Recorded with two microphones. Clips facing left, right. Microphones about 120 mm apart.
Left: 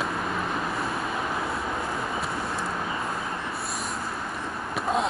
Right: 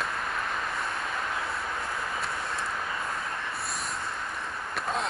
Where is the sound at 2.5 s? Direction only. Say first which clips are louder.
Left 3 dB; 30° left (ahead or behind).